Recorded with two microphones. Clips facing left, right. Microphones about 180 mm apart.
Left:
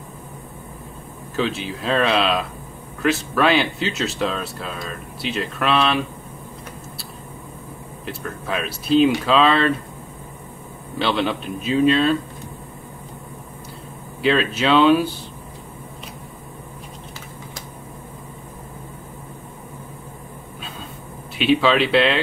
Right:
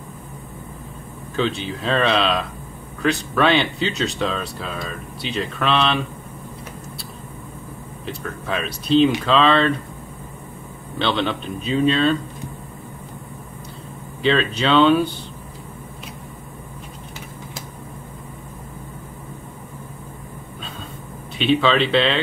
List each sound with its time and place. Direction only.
1.3 s speech: 5° left (ahead or behind)
8.0 s speech: 5° left (ahead or behind)
11.0 s speech: 5° left (ahead or behind)
14.2 s speech: 5° left (ahead or behind)
21.4 s speech: 5° left (ahead or behind)